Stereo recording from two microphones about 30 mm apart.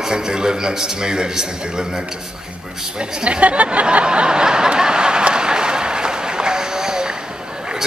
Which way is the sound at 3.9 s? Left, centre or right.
Right.